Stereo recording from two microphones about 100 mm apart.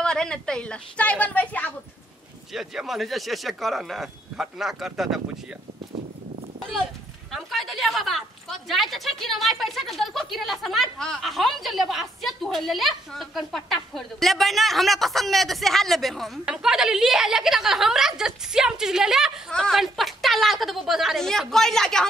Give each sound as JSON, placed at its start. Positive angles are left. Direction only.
{"t": 0.0, "sound": "a woman's voice", "side_deg": 10}
{"t": 2.5, "sound": "a woman's voice", "side_deg": -5}
{"t": 7.3, "sound": "a woman's voice", "side_deg": 0}